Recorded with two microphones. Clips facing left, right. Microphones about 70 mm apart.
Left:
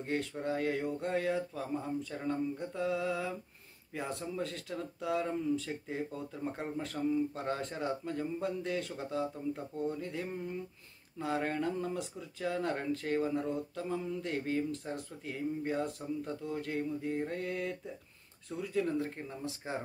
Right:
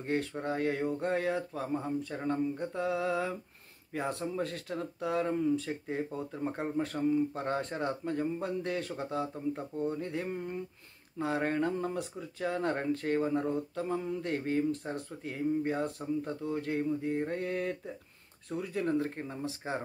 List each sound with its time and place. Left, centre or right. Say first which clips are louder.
0.0 s speech: right 2 dB; right